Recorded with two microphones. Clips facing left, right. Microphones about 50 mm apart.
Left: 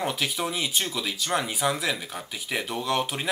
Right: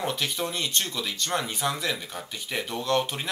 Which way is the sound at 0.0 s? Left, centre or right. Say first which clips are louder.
Left 1 dB; centre.